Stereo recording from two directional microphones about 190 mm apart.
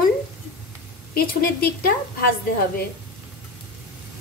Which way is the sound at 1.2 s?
50° left (ahead or behind).